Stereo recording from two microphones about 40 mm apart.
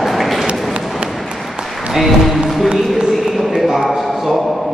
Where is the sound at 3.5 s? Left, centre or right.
Centre.